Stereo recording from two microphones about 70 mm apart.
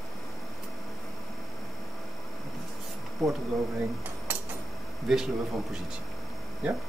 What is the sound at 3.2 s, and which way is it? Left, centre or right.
Speech, centre.